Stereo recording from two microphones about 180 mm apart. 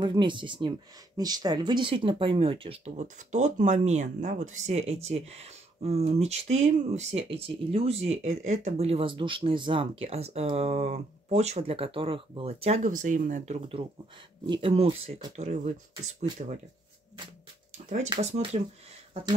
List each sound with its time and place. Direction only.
0.0 s speech: 25° right (ahead or behind); by 13.6 s 45° right (ahead or behind)
14.4 s speech: 30° right (ahead or behind)
17.8 s speech: 40° right (ahead or behind)